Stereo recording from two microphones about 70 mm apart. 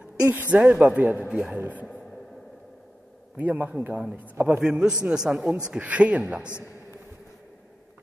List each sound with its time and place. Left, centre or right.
0.3 s a man's voice: right
1.3 s a man's voice: centre
1.6 s a man's voice: right
3.3 s a man's voice: right